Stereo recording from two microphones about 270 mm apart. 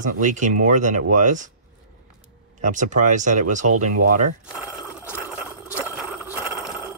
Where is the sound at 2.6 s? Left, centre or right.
Right.